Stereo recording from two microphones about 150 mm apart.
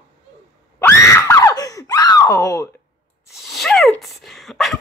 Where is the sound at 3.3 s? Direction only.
Centre (ahead or behind).